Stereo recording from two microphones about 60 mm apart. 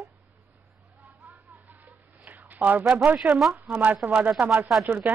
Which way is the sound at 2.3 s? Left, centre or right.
Right.